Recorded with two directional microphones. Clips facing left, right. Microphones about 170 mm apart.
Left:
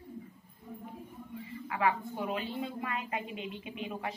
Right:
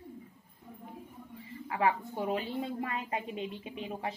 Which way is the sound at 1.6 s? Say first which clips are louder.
Right 1 dB; 35° right (ahead or behind).